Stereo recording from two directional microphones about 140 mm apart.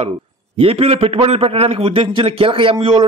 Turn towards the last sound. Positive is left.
turn(degrees=-40)  # may be behind; listen again after turning